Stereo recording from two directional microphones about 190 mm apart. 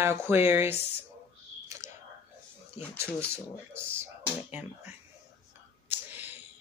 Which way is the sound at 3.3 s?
10° right (ahead or behind).